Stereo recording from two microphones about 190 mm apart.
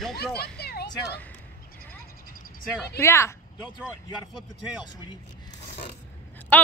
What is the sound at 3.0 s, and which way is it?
Speech, 15° left (ahead or behind).